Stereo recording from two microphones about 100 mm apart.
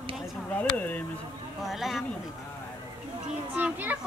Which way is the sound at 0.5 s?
15° left (ahead or behind).